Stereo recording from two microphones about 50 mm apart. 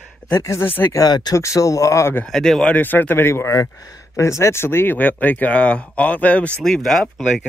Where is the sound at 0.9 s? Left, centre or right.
Left.